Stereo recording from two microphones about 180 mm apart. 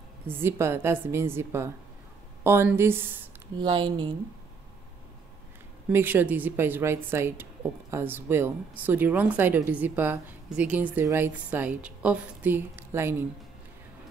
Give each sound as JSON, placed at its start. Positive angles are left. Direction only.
{"t": 0.3, "sound": "a woman's voice", "side_deg": -15}
{"t": 3.6, "sound": "speech", "side_deg": -25}
{"t": 5.9, "sound": "a woman's voice", "side_deg": -10}